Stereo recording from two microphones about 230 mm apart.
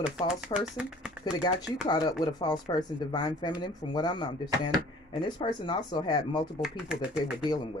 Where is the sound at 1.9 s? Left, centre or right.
Centre.